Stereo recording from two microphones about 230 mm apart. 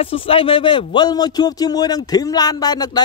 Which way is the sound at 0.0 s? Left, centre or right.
Left.